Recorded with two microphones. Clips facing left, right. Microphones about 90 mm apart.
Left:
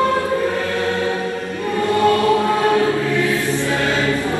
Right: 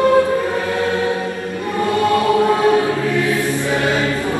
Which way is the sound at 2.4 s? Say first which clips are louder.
Right 2 dB; 20° right (ahead or behind).